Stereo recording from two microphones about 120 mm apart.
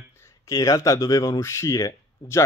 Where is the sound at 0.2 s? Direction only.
25° left (ahead or behind).